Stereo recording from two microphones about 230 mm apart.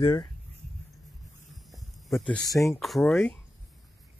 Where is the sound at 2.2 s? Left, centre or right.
Centre.